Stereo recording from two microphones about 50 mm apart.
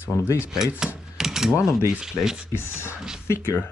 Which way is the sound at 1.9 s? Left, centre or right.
Centre.